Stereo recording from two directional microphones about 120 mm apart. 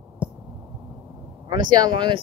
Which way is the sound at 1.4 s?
35° right (ahead or behind).